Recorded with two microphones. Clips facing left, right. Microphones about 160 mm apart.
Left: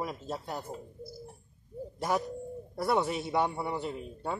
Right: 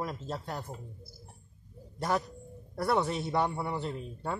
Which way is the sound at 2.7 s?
5° left (ahead or behind).